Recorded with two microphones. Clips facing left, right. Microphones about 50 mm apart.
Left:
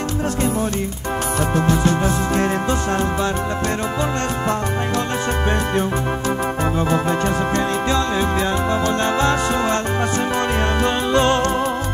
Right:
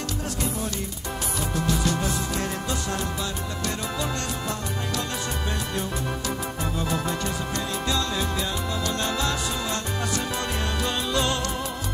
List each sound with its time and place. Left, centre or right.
1.5 s music: left
6.8 s music: left
10.8 s music: left